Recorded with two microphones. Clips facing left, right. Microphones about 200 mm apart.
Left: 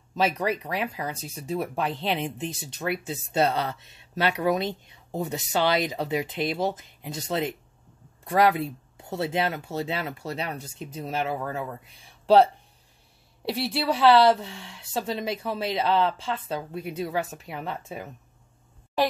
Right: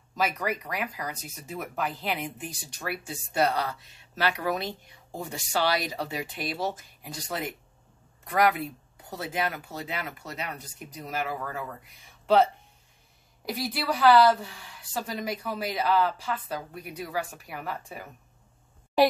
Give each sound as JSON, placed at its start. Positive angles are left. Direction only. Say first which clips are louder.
{"t": 0.1, "sound": "speech", "louder": "left 4 dB", "side_deg": 25}
{"t": 13.5, "sound": "speech", "louder": "left 4 dB", "side_deg": 25}